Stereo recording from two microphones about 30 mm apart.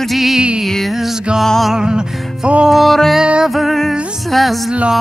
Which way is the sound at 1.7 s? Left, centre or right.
Right.